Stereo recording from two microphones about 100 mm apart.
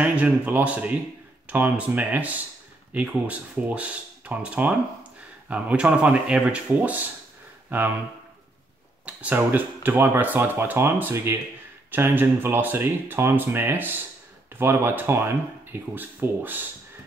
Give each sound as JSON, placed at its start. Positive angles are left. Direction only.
{"t": 0.0, "sound": "speech", "side_deg": -15}
{"t": 9.0, "sound": "speech", "side_deg": -15}